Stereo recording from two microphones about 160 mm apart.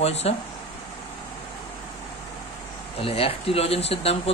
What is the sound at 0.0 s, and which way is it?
Speech, 40° left (ahead or behind).